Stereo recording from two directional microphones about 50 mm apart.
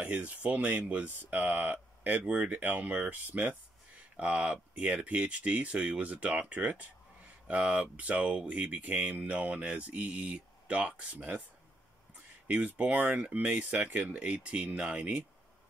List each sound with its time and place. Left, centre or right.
0.0 s speech: right
12.4 s speech: right